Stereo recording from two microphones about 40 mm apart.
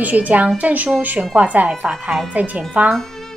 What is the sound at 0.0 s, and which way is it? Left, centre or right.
A woman's voice, right.